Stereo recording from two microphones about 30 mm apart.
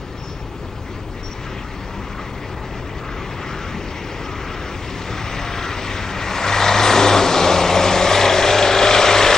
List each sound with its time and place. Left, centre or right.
5.1 s vehicle: centre